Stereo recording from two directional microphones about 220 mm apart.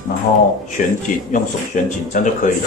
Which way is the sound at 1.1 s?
35° left (ahead or behind).